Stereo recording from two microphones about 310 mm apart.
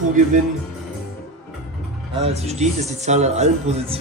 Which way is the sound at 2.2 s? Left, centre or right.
Centre.